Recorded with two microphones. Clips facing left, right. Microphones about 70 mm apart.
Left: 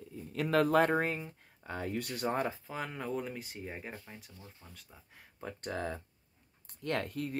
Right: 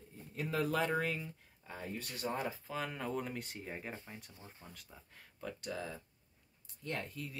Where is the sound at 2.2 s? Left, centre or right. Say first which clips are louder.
Left 5 dB; left.